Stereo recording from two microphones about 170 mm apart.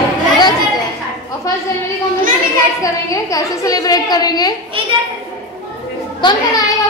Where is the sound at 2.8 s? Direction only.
20° left (ahead or behind).